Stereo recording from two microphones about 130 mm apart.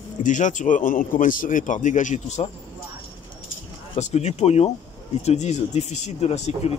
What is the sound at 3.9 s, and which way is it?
Speech, 60° left (ahead or behind).